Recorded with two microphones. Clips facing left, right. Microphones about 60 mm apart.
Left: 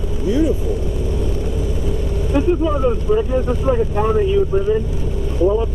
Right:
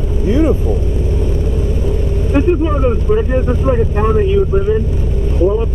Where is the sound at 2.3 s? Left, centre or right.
Right.